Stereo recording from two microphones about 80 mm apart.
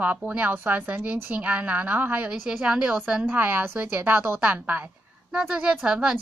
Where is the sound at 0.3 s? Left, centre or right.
Right.